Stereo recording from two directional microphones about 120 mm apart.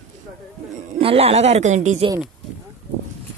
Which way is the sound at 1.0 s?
55° right (ahead or behind).